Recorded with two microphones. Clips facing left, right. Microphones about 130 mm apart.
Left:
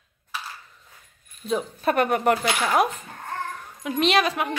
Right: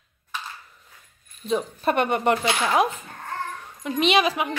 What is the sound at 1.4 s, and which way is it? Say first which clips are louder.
A woman's voice: right 1 dB; centre (ahead or behind).